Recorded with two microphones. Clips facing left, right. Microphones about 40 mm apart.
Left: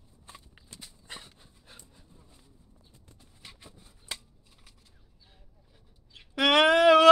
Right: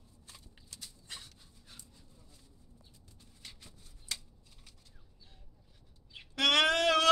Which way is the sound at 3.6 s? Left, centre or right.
Left.